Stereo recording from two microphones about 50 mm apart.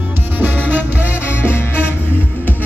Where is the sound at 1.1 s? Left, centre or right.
Left.